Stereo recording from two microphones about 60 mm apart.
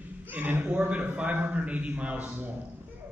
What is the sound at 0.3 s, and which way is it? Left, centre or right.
A man's voice, right.